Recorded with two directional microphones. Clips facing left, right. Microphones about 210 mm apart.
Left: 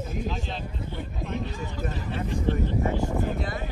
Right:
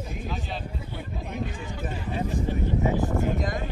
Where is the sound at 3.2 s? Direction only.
45° right (ahead or behind).